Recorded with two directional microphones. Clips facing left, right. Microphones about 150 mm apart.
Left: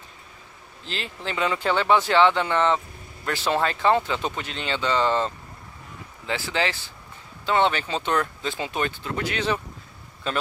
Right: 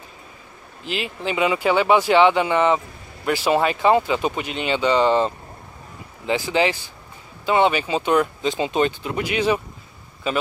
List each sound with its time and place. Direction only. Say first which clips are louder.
0.8 s speech: right 6 dB; 15° right (ahead or behind)